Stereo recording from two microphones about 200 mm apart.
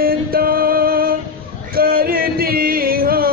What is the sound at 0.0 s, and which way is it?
Music, 45° right (ahead or behind).